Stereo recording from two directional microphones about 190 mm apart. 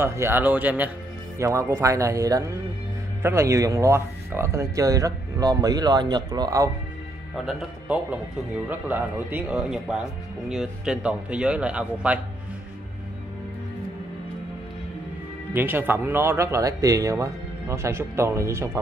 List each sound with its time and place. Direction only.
0.0 s speech: 15° right (ahead or behind)
7.3 s speech: 5° right (ahead or behind)
15.5 s speech: 10° right (ahead or behind)